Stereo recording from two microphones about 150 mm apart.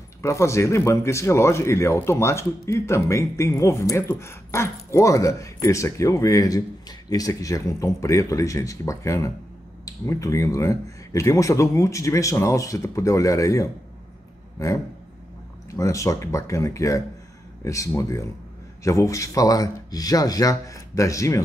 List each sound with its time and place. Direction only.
0.2 s speech: 20° left (ahead or behind)
15.7 s speech: 20° left (ahead or behind)